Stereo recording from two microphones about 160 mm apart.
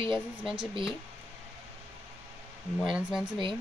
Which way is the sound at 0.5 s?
30° right (ahead or behind).